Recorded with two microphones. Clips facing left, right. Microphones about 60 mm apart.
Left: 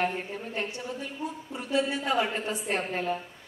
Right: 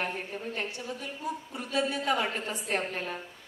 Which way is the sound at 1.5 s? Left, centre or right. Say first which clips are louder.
Left 3 dB; left.